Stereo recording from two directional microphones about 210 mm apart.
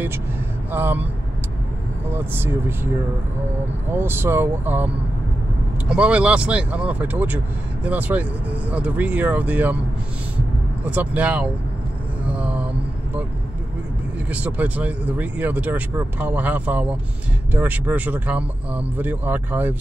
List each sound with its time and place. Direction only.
0.7 s speech: 10° right (ahead or behind)
2.1 s speech: 10° right (ahead or behind)
3.9 s speech: 10° right (ahead or behind)
10.8 s speech: 5° right (ahead or behind)
12.3 s a sound: 5° right (ahead or behind)
14.3 s speech: 5° right (ahead or behind)